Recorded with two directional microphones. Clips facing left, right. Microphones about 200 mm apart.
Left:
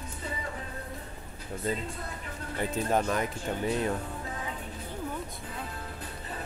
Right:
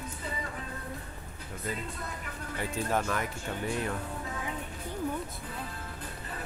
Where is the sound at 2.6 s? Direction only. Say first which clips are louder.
Left 3 dB; 20° left (ahead or behind).